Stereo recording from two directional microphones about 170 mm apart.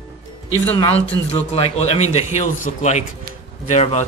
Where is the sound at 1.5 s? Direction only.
35° left (ahead or behind).